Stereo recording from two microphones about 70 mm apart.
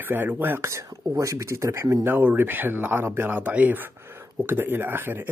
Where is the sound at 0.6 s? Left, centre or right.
Right.